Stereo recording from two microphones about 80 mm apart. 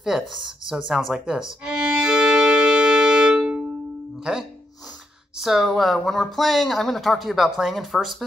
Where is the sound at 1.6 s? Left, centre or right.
Centre.